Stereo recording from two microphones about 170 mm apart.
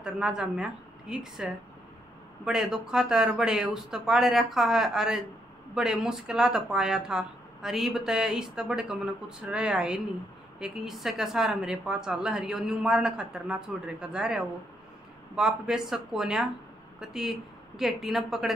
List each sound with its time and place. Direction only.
0.0 s a woman's voice: 5° right (ahead or behind)